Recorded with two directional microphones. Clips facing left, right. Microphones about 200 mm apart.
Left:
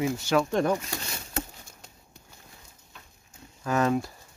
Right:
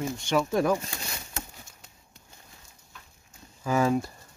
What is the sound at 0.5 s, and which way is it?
Speech, 5° right (ahead or behind).